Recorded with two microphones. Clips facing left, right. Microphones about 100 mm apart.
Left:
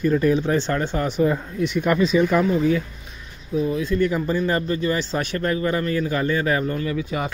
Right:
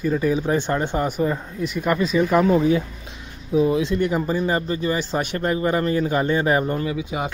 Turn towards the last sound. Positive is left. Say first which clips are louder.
# even
turn(degrees=-15)  # may be behind; listen again after turning